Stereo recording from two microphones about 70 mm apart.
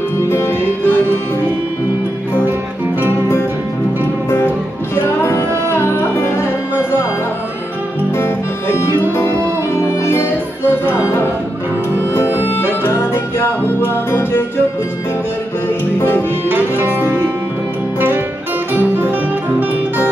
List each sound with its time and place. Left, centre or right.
0.3 s music: left
4.9 s music: left
8.2 s music: left
12.4 s music: left
16.4 s music: right
18.7 s music: right